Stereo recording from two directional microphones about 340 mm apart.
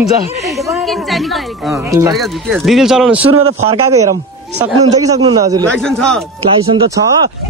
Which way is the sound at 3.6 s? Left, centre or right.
Centre.